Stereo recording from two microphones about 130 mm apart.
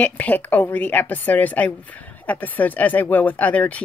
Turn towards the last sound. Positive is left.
turn(degrees=10)  # may be behind; listen again after turning